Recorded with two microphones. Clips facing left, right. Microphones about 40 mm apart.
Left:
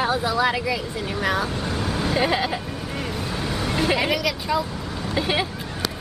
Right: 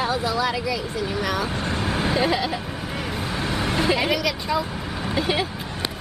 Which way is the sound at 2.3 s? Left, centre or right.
Left.